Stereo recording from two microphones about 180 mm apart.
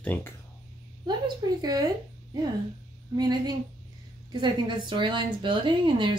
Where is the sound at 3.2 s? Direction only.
20° right (ahead or behind).